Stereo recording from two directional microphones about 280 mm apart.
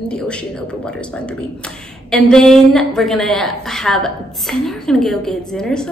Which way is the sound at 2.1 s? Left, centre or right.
Centre.